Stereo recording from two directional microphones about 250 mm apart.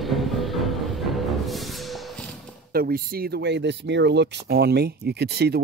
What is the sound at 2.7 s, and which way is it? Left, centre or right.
Speech, right.